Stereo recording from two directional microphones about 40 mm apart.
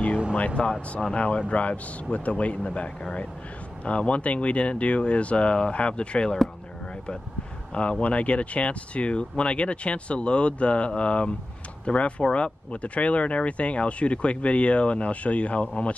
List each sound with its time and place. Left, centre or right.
0.6 s speech: left
7.7 s speech: left